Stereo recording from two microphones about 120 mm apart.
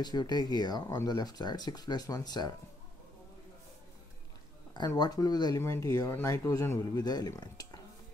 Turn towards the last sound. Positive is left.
turn(degrees=35)  # may be behind; listen again after turning